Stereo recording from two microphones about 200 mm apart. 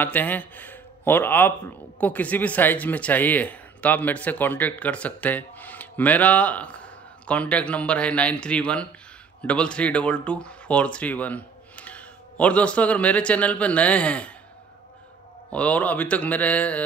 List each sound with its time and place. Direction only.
0.0 s a man's voice: 10° left (ahead or behind)
15.5 s speech: 5° left (ahead or behind)